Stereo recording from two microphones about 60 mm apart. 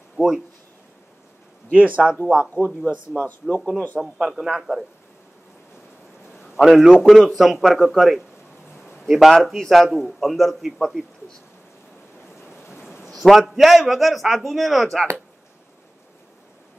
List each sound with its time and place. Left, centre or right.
0.2 s speech: left
1.7 s speech: right
2.2 s a man's voice: centre
3.3 s speech: left
4.0 s a man's voice: centre
6.3 s a sound: centre
6.8 s a man's voice: centre
12.8 s a man's voice: centre